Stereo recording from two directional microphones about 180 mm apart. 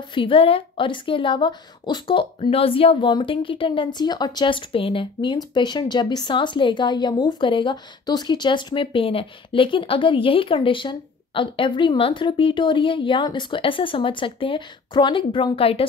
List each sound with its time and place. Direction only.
0.1 s a woman's voice: 30° left (ahead or behind)